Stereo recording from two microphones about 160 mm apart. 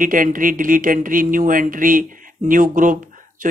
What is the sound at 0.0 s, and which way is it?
Speech, 55° right (ahead or behind).